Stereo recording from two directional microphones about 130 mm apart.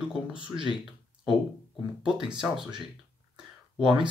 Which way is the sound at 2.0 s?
5° right (ahead or behind).